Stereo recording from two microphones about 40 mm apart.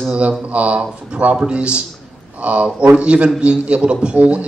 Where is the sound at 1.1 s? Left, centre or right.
Right.